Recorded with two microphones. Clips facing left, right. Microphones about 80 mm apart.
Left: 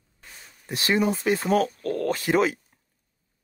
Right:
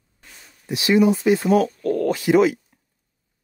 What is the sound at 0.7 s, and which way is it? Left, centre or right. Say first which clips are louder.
Speech: right 6 dB; left.